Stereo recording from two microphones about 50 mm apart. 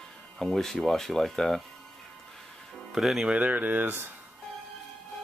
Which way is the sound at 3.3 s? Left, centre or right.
Right.